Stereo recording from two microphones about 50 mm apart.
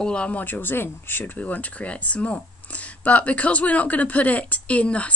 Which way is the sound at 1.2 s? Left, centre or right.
Left.